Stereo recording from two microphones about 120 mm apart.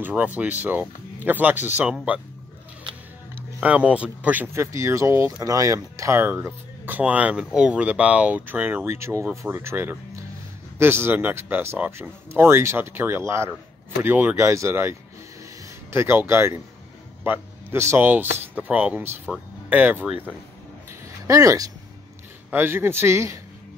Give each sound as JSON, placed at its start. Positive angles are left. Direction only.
{"t": 0.0, "sound": "speech", "side_deg": -15}
{"t": 3.3, "sound": "speech", "side_deg": -10}
{"t": 4.7, "sound": "speech", "side_deg": -25}
{"t": 21.3, "sound": "speech", "side_deg": -30}
{"t": 22.5, "sound": "speech", "side_deg": -20}